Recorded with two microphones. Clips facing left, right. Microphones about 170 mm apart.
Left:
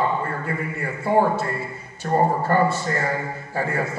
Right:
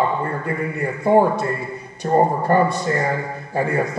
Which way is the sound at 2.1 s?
15° right (ahead or behind).